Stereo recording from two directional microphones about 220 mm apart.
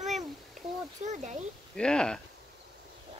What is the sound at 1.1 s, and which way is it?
Speech, 35° right (ahead or behind).